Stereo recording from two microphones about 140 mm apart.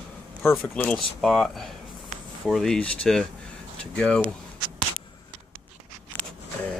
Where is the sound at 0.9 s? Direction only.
Centre (ahead or behind).